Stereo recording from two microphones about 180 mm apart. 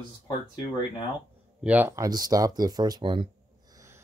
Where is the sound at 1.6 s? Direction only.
10° right (ahead or behind); by 3.3 s 25° right (ahead or behind).